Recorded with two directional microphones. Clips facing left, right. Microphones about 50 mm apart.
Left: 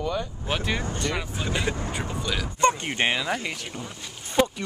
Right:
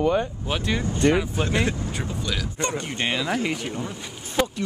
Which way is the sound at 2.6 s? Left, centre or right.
Left.